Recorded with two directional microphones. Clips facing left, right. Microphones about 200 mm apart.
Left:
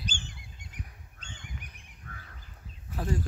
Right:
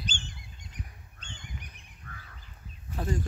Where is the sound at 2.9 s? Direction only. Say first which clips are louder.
Even; 5° left (ahead or behind).